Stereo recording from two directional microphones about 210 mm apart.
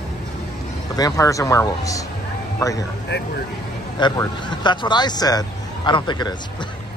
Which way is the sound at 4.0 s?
20° left (ahead or behind).